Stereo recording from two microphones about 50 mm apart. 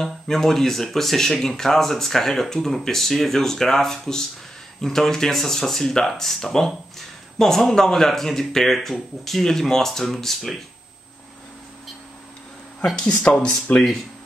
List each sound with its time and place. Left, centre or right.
0.0 s speech: centre
12.8 s speech: centre